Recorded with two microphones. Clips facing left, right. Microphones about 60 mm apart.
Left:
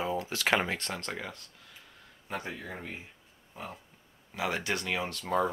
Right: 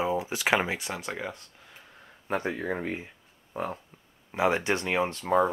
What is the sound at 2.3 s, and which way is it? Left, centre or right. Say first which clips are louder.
Speech: right 8 dB; right.